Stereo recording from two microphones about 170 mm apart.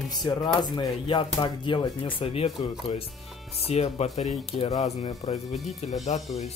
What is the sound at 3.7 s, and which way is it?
Speech, 40° left (ahead or behind).